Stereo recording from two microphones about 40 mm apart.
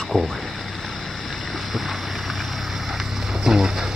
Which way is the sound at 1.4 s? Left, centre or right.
Centre.